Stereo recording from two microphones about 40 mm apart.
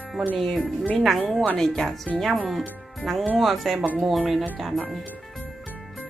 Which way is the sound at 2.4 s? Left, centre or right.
Centre.